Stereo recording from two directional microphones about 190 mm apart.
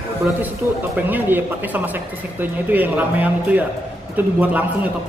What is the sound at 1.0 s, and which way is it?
Speech, 10° right (ahead or behind).